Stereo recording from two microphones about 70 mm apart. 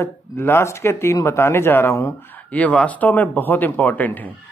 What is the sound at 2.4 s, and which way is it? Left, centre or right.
Speech, left.